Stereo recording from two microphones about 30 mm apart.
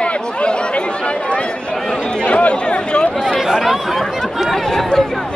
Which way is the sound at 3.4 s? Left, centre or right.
Centre.